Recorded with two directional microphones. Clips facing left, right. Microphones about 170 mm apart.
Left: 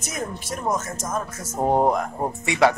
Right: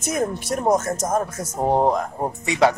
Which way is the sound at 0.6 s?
40° right (ahead or behind).